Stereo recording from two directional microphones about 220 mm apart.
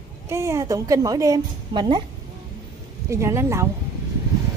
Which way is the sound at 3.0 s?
15° right (ahead or behind).